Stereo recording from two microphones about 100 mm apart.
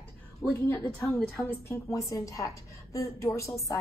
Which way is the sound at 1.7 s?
35° left (ahead or behind).